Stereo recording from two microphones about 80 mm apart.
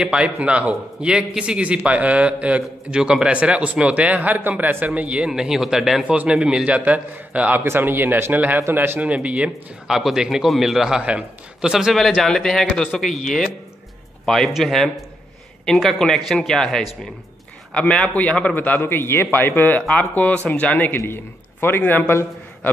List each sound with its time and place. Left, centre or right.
0.0 s a man's voice: centre
7.6 s a man's voice: right
9.0 s a man's voice: centre
9.8 s a man's voice: centre
12.2 s a man's voice: centre; by 22.7 s left